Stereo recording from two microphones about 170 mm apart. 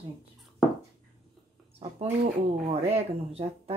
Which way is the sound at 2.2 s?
35° right (ahead or behind).